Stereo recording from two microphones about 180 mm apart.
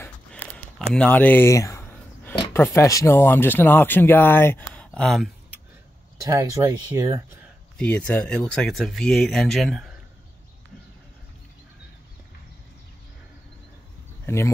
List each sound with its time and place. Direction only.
0.9 s a sound: 5° left (ahead or behind)
2.5 s speech: 15° left (ahead or behind)
6.2 s speech: 15° right (ahead or behind)
7.7 s speech: 5° left (ahead or behind)
14.2 s speech: 15° left (ahead or behind)